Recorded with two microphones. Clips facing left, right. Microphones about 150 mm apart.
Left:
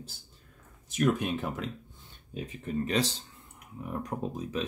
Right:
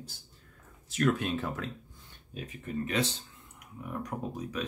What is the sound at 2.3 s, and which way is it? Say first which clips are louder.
Speech: left 3 dB; 30° left (ahead or behind).